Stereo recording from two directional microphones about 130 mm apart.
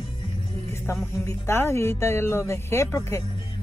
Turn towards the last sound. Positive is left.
turn(degrees=20)  # may be behind; listen again after turning